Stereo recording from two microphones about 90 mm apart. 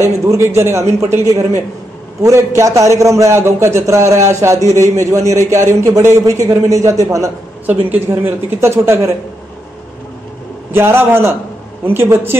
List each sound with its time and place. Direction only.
0.0 s a man's voice: 30° right (ahead or behind)
7.6 s speech: 20° right (ahead or behind)
10.7 s speech: 25° right (ahead or behind)